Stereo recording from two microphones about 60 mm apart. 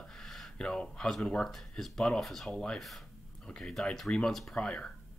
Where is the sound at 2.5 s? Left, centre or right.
Centre.